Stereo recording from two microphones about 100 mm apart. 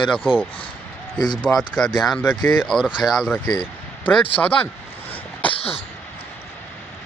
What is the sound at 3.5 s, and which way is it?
Speech, 15° left (ahead or behind).